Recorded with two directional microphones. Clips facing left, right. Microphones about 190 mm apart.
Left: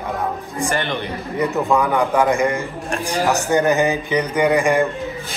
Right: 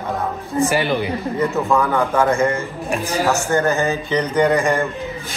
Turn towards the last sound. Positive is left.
turn(degrees=15)  # may be behind; listen again after turning